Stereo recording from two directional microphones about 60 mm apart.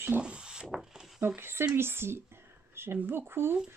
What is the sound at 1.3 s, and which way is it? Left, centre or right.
Speech, right.